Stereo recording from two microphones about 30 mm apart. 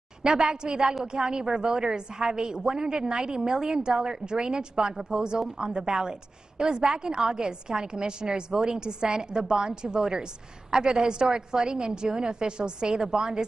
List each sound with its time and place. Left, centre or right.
0.2 s a woman's voice: right